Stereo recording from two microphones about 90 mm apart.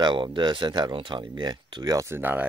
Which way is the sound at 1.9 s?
30° right (ahead or behind).